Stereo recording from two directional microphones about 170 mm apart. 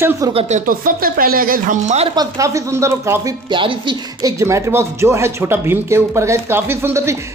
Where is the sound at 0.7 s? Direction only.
55° right (ahead or behind).